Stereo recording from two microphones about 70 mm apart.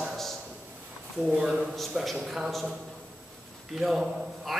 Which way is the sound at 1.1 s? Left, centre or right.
Centre.